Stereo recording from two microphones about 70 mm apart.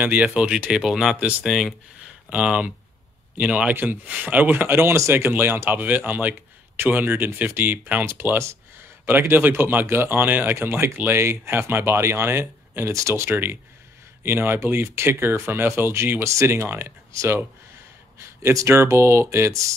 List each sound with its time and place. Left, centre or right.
0.0 s speech: centre
2.2 s speech: centre; by 19.5 s right